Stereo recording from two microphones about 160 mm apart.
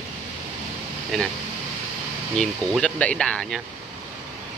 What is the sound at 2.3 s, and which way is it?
Speech, 5° left (ahead or behind).